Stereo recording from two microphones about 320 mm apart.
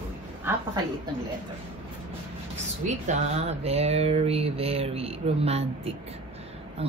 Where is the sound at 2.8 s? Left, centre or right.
Right.